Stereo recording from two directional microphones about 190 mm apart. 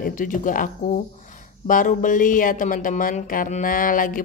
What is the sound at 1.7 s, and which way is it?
Speech, 45° left (ahead or behind).